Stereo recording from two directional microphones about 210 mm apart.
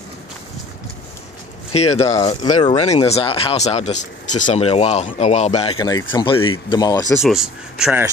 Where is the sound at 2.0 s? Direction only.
15° left (ahead or behind).